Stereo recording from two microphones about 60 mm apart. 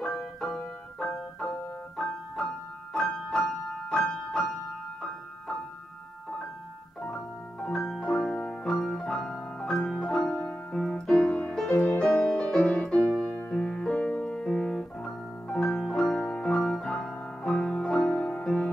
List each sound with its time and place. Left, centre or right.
0.0 s music: centre
7.0 s music: centre
13.3 s music: left
13.6 s music: centre
16.0 s piano: centre
17.4 s music: centre